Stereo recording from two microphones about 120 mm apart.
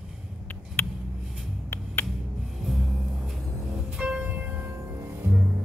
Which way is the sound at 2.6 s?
Centre (ahead or behind).